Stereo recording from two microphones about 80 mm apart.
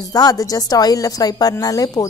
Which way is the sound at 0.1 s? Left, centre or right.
Left.